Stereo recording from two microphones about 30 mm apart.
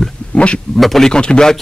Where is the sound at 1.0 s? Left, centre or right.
Left.